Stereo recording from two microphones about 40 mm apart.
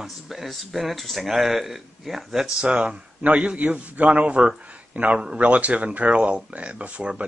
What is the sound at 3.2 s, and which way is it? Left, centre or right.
A man's voice, right.